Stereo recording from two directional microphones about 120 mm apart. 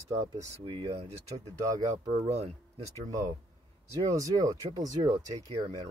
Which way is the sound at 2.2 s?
65° right (ahead or behind).